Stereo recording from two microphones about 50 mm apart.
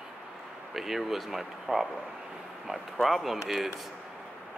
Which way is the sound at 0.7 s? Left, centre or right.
Centre.